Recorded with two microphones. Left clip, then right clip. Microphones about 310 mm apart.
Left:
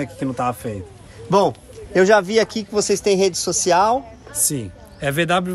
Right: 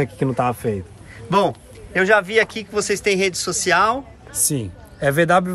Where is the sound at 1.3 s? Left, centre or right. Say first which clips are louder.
Left 1 dB; centre.